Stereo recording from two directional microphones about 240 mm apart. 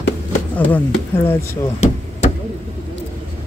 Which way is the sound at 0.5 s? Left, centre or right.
Centre.